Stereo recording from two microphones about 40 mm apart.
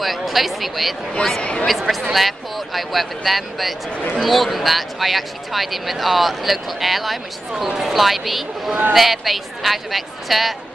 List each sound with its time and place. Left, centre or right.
0.0 s speech: centre
1.4 s speech: left
1.7 s speech: centre